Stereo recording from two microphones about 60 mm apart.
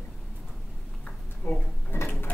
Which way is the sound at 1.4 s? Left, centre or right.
Left.